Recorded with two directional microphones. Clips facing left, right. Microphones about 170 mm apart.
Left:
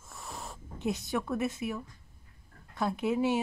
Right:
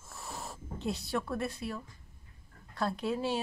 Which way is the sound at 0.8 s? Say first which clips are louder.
Left 2 dB; 20° left (ahead or behind).